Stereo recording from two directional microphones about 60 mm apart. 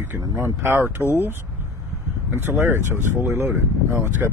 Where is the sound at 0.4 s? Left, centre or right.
Right.